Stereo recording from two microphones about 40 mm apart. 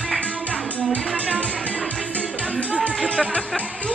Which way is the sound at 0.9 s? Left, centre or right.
Left.